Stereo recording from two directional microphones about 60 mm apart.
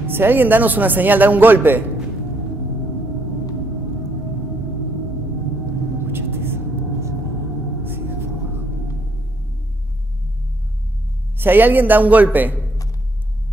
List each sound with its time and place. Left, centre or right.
0.0 s speech: right
6.0 s vehicle: right
11.3 s a man's voice: right